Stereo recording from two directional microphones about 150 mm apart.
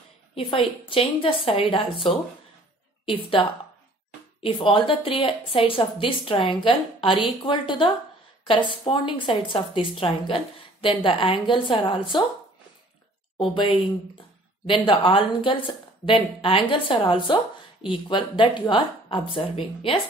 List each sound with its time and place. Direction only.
0.3 s a sound: 40° left (ahead or behind)
0.8 s a woman's voice: 35° left (ahead or behind)
4.4 s a woman's voice: 35° left (ahead or behind)
13.4 s a woman's voice: 35° left (ahead or behind)